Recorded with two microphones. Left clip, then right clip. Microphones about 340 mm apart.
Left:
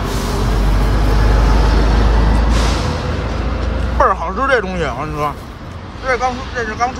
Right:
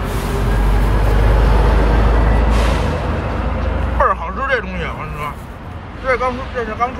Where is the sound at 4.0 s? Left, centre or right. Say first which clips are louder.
Left 2 dB; centre.